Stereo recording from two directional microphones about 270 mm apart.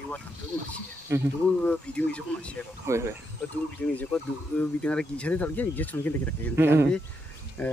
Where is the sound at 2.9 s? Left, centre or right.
Centre.